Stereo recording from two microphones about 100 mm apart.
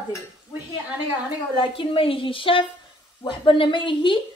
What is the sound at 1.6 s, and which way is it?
A woman's voice, 60° left (ahead or behind).